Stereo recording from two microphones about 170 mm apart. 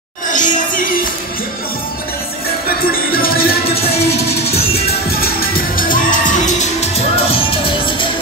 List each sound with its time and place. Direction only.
0.3 s music: 50° left (ahead or behind)
3.1 s music: 60° left (ahead or behind)
5.2 s music: 60° left (ahead or behind); by 8.1 s 30° left (ahead or behind)